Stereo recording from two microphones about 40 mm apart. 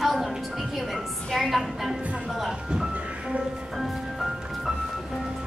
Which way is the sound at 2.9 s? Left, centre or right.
Right.